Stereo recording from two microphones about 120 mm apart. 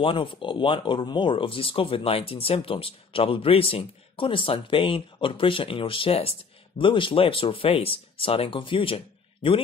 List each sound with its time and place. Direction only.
0.0 s speech: 45° left (ahead or behind)